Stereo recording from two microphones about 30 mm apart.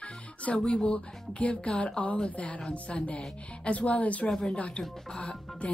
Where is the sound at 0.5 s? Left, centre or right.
Left.